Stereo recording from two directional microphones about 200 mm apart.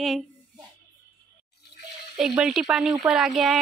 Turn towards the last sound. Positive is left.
turn(degrees=0)  # may be behind; listen again after turning